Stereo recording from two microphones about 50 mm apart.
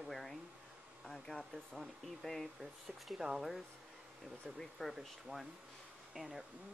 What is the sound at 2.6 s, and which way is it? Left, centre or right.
Speech, centre.